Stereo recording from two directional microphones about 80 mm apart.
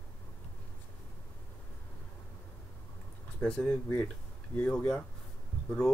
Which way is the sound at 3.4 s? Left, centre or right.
Centre.